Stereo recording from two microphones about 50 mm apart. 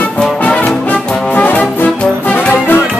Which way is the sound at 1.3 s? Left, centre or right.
Left.